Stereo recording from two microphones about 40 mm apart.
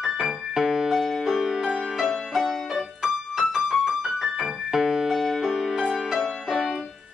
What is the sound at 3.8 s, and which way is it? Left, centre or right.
Keyboard, centre.